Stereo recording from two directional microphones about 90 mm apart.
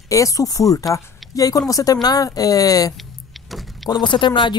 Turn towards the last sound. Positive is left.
turn(degrees=60)  # may be behind; listen again after turning